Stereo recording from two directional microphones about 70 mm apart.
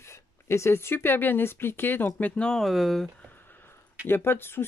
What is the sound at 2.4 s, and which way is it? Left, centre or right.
Speech, centre.